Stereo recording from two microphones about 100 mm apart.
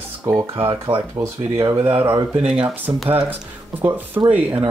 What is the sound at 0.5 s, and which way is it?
Speech, 65° right (ahead or behind).